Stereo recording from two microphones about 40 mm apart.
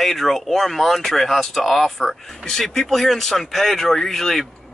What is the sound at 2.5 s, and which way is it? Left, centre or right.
Speech, centre.